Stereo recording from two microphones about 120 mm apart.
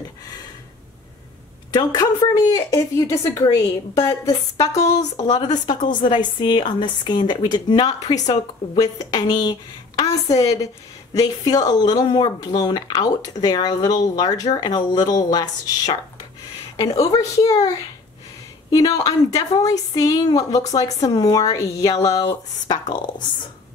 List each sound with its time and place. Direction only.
1.7 s speech: 35° left (ahead or behind)